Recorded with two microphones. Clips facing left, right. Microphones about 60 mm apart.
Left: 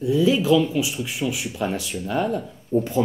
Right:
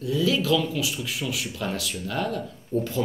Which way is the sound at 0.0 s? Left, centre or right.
Left.